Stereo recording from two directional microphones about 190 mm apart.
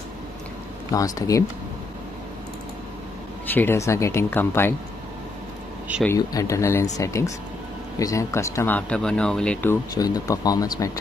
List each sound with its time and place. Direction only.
0.9 s speech: 20° left (ahead or behind)
3.5 s speech: 15° left (ahead or behind)
6.0 s speech: 15° left (ahead or behind)